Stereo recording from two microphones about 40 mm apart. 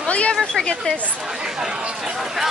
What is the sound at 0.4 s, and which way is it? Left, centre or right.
Speech, centre.